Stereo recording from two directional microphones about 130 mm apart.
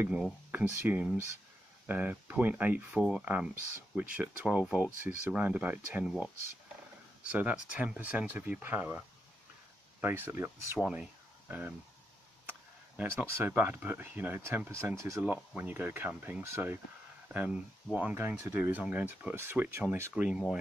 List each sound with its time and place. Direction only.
0.1 s speech: 10° right (ahead or behind)
7.2 s speech: 10° right (ahead or behind)